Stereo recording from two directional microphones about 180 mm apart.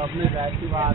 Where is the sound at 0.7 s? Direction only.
15° right (ahead or behind).